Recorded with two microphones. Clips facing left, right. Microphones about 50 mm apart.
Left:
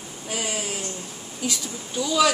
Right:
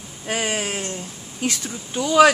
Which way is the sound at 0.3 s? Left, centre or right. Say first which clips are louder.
Right 5 dB; right.